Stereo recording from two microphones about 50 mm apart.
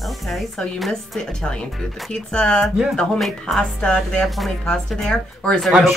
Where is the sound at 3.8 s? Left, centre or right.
Left.